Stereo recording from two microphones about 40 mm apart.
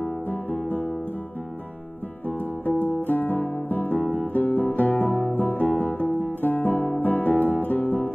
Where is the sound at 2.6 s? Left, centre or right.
Left.